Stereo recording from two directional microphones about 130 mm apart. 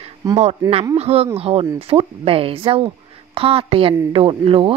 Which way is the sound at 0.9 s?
50° right (ahead or behind).